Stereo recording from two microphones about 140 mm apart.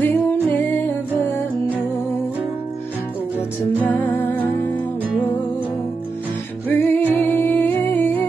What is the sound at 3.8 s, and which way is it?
Music, 15° left (ahead or behind).